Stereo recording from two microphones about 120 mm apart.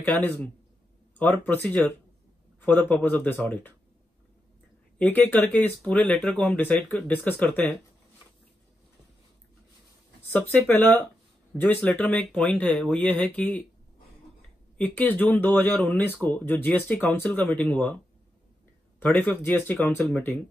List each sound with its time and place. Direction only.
0.0 s speech: 15° left (ahead or behind)
4.9 s speech: 15° left (ahead or behind)
10.2 s speech: 15° left (ahead or behind)
14.8 s speech: 15° left (ahead or behind)
18.9 s speech: 15° left (ahead or behind)